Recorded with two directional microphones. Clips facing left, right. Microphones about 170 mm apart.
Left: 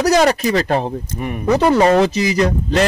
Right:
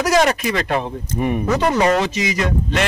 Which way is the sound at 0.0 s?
35° left (ahead or behind).